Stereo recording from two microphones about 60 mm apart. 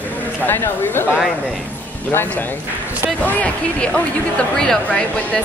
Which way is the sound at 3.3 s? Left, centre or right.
Left.